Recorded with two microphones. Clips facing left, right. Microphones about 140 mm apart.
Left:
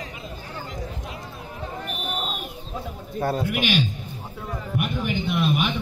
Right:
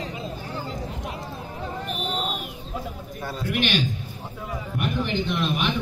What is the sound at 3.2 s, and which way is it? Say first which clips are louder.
Speech: left 7 dB; 55° left (ahead or behind).